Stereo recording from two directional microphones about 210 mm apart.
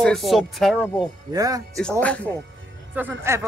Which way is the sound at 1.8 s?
5° left (ahead or behind).